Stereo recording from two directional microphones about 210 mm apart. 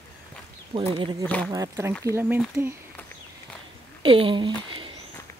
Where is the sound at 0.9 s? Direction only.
25° right (ahead or behind).